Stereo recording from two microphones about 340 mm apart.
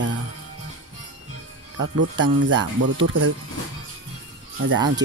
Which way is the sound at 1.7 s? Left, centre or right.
Right.